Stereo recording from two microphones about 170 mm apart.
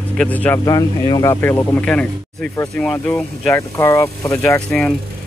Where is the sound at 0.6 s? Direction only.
20° left (ahead or behind).